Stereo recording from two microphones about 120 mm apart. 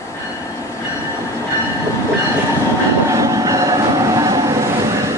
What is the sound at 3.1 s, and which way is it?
Train, 30° right (ahead or behind).